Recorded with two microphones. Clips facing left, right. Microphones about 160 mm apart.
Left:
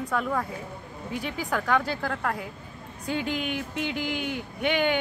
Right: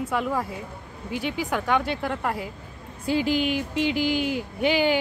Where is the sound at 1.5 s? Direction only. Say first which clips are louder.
Even; centre (ahead or behind).